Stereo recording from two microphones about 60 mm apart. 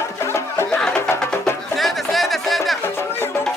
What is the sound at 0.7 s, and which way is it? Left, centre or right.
Music, centre.